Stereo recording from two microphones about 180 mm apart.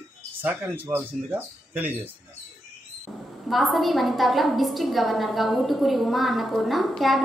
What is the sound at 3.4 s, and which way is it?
A woman's voice, centre (ahead or behind).